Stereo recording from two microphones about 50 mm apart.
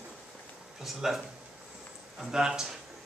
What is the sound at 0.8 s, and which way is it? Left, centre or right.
Speech, centre.